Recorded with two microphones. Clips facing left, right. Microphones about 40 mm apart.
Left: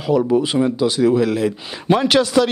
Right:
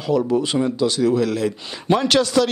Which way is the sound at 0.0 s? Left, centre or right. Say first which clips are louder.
Left 3 dB; centre.